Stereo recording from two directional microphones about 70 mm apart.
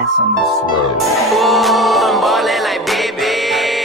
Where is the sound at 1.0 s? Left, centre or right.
Centre.